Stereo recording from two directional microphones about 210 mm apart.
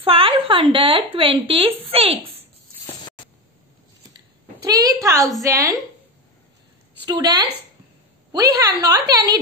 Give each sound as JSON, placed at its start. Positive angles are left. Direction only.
{"t": 0.0, "sound": "speech", "side_deg": -25}
{"t": 4.6, "sound": "a woman's voice", "side_deg": -20}
{"t": 7.1, "sound": "a woman's voice", "side_deg": -20}